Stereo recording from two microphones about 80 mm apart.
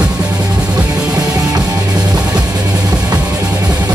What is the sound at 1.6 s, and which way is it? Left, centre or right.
Music, right.